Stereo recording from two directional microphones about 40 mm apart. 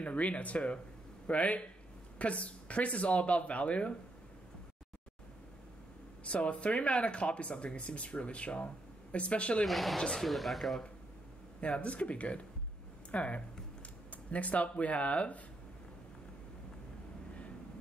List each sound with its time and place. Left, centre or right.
0.0 s speech: left
6.2 s speech: left
9.7 s speech: centre
9.9 s speech: centre
10.3 s speech: centre
11.6 s speech: left